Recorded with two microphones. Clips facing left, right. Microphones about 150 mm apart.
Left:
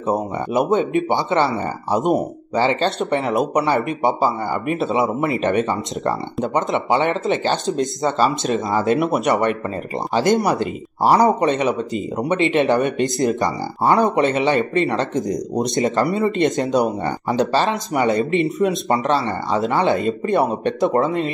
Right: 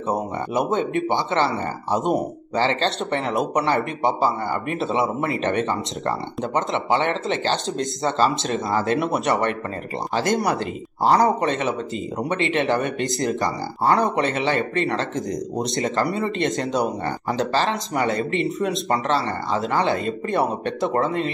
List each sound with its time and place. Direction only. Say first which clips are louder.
0.0 s speech: left 3 dB; 20° left (ahead or behind)